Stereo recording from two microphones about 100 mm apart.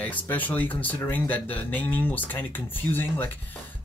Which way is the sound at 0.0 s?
15° left (ahead or behind).